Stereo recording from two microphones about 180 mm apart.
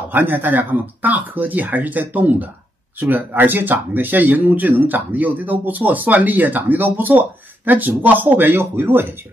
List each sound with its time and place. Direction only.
0.1 s speech: 10° right (ahead or behind)